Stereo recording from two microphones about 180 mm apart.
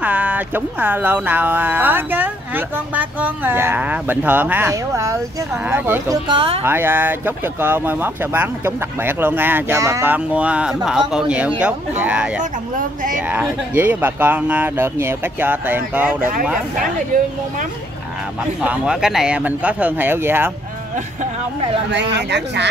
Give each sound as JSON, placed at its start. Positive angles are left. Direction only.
{"t": 0.0, "sound": "speech", "side_deg": -10}
{"t": 6.2, "sound": "speech", "side_deg": -30}
{"t": 6.6, "sound": "speech", "side_deg": -10}
{"t": 16.7, "sound": "speech", "side_deg": -45}
{"t": 18.6, "sound": "speech", "side_deg": -5}
{"t": 21.9, "sound": "speech", "side_deg": -70}